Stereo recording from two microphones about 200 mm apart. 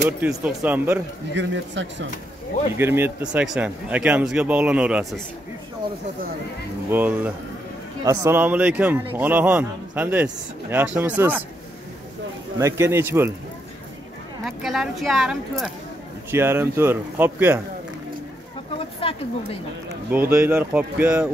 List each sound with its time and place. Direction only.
0.0 s a man's voice: 10° right (ahead or behind)
1.3 s speech: 65° right (ahead or behind)
2.8 s a man's voice: 10° right (ahead or behind)
6.9 s a man's voice: 10° right (ahead or behind)
12.5 s a man's voice: 15° right (ahead or behind)
14.4 s a man's voice: centre (ahead or behind)
18.8 s a sound: 25° left (ahead or behind)
20.1 s a man's voice: 10° right (ahead or behind)